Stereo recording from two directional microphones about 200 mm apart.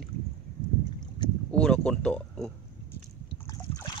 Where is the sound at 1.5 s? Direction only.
5° left (ahead or behind).